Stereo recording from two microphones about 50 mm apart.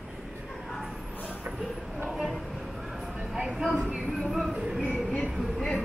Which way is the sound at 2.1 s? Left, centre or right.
Centre.